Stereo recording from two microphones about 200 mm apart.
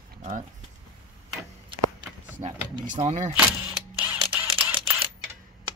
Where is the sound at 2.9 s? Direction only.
35° right (ahead or behind).